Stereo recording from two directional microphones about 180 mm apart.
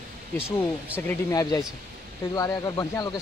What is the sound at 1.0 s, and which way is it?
Speech, 10° left (ahead or behind).